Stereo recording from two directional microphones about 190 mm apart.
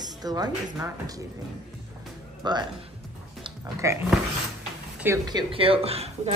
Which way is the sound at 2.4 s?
20° right (ahead or behind).